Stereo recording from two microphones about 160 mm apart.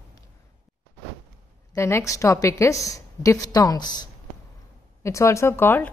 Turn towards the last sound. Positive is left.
turn(degrees=15)  # may be behind; listen again after turning